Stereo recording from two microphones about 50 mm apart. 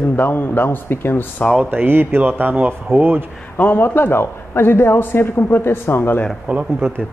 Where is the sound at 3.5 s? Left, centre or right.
Left.